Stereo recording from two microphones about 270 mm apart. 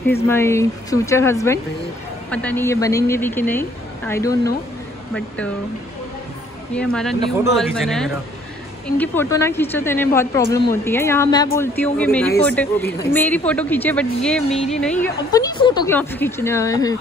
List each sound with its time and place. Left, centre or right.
0.3 s a woman's voice: centre
6.7 s a woman's voice: centre